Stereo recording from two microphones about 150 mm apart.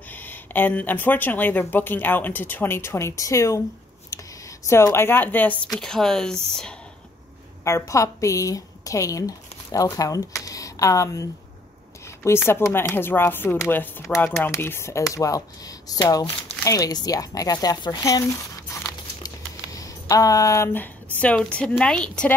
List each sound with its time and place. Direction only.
0.1 s speech: 10° left (ahead or behind)
4.1 s a sound: 25° left (ahead or behind)
4.6 s speech: 20° left (ahead or behind)
7.6 s a woman's voice: 20° left (ahead or behind)
12.4 s speech: 15° left (ahead or behind)
18.7 s a sound: 25° left (ahead or behind)
21.2 s speech: 10° left (ahead or behind)